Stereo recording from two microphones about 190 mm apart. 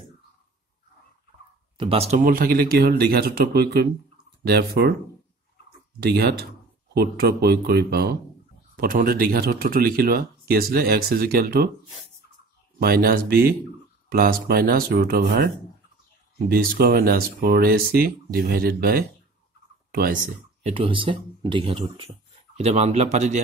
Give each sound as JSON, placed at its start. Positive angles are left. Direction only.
{"t": 1.8, "sound": "speech", "side_deg": -30}
{"t": 5.9, "sound": "speech", "side_deg": -55}
{"t": 12.7, "sound": "speech", "side_deg": -50}
{"t": 20.6, "sound": "a man's voice", "side_deg": -30}